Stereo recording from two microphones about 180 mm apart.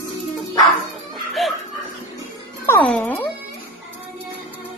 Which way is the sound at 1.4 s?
Centre (ahead or behind).